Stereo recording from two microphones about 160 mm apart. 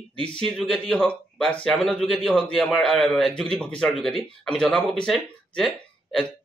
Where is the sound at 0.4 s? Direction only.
5° left (ahead or behind).